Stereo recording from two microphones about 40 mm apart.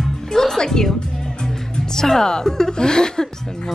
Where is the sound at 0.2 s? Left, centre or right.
Centre.